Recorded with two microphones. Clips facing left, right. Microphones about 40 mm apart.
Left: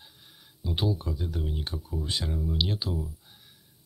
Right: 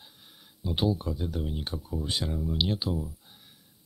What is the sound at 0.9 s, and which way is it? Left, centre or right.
Speech, right.